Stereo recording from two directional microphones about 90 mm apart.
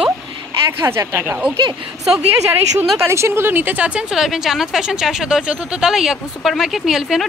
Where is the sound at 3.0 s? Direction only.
30° right (ahead or behind).